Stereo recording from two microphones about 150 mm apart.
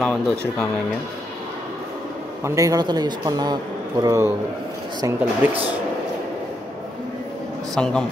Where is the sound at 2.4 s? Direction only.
20° right (ahead or behind).